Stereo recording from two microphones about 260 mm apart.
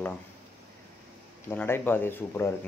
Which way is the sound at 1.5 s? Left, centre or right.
Centre.